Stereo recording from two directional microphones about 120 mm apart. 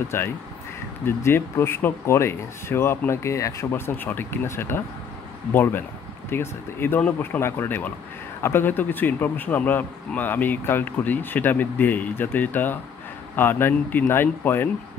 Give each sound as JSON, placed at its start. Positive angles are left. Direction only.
{"t": 0.1, "sound": "speech", "side_deg": 20}